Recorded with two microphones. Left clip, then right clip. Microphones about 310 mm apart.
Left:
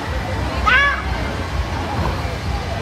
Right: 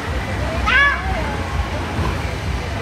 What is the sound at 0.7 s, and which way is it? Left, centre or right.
Children playing, left.